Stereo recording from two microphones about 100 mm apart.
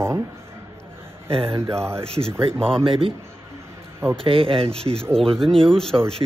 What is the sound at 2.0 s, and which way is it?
Speech, 80° right.